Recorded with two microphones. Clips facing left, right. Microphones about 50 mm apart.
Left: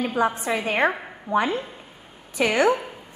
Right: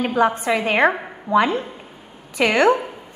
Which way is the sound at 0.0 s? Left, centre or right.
Right.